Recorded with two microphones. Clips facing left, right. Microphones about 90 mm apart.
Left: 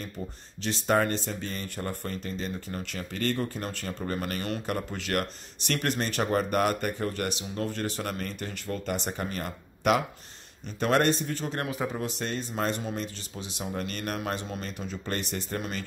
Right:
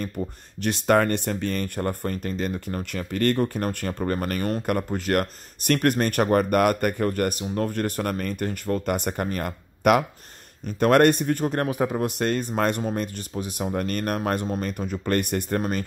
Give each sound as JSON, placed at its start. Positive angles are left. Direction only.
{"t": 0.6, "sound": "speech", "side_deg": -60}